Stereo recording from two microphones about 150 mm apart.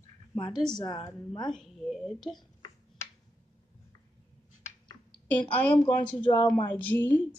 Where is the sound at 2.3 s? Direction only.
25° left (ahead or behind).